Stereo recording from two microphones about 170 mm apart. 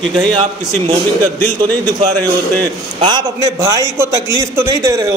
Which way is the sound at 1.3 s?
15° left (ahead or behind).